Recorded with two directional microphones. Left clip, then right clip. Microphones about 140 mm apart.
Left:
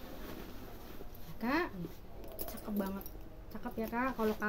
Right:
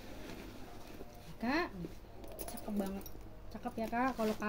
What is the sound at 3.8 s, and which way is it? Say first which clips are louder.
Speech: even; 15° left (ahead or behind).